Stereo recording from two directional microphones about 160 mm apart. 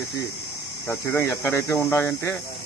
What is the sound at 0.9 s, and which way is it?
Speech, 15° left (ahead or behind).